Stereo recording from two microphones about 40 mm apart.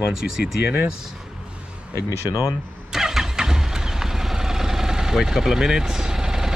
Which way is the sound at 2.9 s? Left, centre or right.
Centre.